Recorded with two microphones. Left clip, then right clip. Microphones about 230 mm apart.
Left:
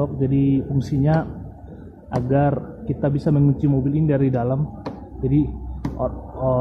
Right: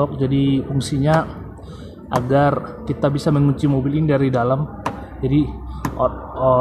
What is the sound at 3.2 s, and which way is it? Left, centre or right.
Speech, right.